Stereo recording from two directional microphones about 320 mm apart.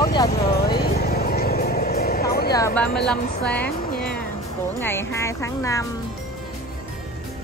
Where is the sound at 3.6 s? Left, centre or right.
Left.